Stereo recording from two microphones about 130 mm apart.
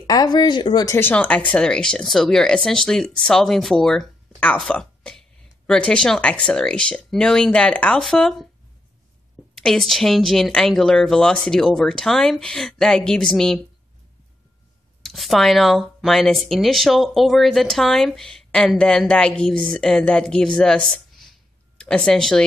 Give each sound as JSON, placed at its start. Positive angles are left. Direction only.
{"t": 0.0, "sound": "speech", "side_deg": 30}
{"t": 0.8, "sound": "speech", "side_deg": 15}
{"t": 9.6, "sound": "speech", "side_deg": 5}
{"t": 15.0, "sound": "speech", "side_deg": 0}